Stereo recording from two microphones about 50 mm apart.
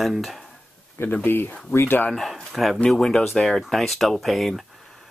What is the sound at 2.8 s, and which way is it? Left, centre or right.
Speech, centre.